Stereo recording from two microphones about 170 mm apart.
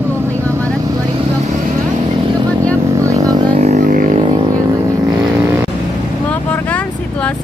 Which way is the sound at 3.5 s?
40° right (ahead or behind).